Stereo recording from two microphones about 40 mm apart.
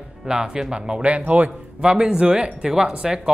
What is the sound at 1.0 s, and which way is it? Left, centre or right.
Speech, right.